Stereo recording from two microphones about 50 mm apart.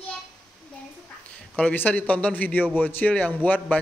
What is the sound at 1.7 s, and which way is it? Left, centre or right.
A man's voice, left.